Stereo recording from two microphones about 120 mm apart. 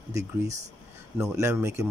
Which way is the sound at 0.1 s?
25° right (ahead or behind).